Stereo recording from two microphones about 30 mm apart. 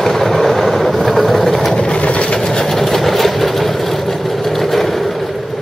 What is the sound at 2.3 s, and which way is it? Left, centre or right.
Vehicle, left.